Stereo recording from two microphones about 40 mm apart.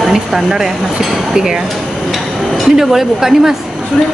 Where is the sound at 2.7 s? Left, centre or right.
Centre.